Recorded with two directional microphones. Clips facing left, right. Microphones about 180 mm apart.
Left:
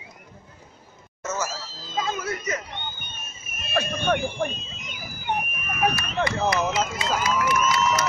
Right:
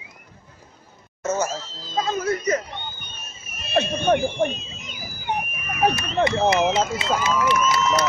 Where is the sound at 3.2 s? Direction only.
50° left (ahead or behind).